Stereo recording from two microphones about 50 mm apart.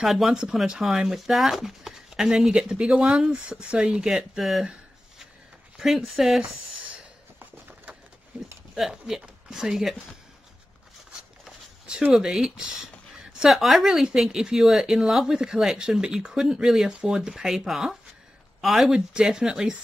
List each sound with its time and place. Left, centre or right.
0.0 s speech: centre
4.4 s speech: centre
5.8 s speech: centre
8.3 s speech: centre
12.2 s speech: centre
18.9 s speech: centre